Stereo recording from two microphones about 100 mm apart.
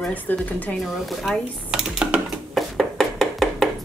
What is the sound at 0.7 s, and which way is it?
Dishes, centre (ahead or behind).